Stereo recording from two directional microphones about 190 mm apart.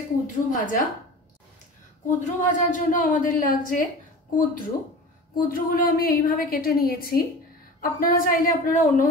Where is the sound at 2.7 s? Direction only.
45° left (ahead or behind).